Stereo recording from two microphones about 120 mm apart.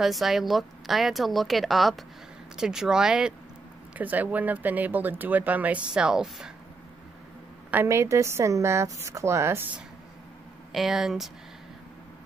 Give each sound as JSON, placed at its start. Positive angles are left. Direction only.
{"t": 0.0, "sound": "a woman's voice", "side_deg": 0}
{"t": 7.7, "sound": "a woman's voice", "side_deg": -20}
{"t": 10.7, "sound": "a woman's voice", "side_deg": 0}